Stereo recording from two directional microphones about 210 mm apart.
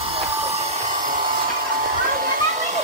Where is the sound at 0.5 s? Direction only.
30° right (ahead or behind).